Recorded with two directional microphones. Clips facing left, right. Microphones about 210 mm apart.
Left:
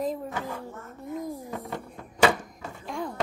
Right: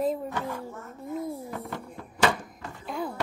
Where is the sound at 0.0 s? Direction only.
Centre (ahead or behind).